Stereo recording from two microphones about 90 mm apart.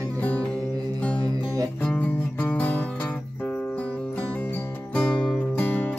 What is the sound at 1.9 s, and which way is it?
Music, 15° left (ahead or behind).